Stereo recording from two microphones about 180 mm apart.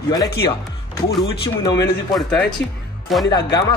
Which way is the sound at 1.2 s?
20° left (ahead or behind).